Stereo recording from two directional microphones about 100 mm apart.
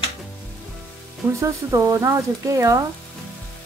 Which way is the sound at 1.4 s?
30° right (ahead or behind).